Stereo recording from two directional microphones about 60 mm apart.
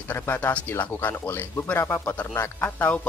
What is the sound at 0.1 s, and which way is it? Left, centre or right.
Speech, left.